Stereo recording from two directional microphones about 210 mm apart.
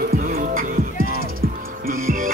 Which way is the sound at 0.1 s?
45° right (ahead or behind).